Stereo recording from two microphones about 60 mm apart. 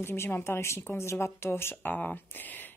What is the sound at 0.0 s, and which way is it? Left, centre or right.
Speech, left.